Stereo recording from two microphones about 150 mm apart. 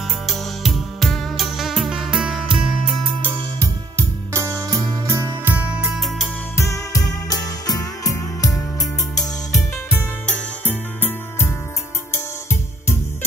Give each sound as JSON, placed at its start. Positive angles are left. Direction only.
{"t": 0.3, "sound": "music", "side_deg": 0}
{"t": 4.3, "sound": "music", "side_deg": -20}
{"t": 6.6, "sound": "music", "side_deg": 20}
{"t": 9.9, "sound": "music", "side_deg": 10}